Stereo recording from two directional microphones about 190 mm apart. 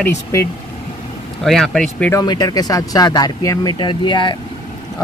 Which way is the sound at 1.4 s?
Centre (ahead or behind).